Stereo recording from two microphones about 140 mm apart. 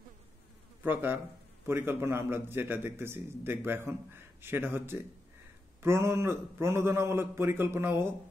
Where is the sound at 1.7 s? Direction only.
15° right (ahead or behind).